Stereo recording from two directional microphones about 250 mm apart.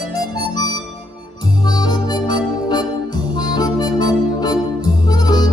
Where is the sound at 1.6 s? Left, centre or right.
Centre.